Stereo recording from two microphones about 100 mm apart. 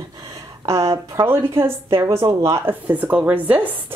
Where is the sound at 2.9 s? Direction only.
15° right (ahead or behind).